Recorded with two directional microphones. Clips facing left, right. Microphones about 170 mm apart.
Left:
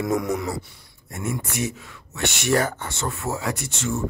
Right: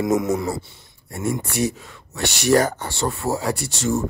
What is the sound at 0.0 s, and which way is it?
Speech, 20° right (ahead or behind).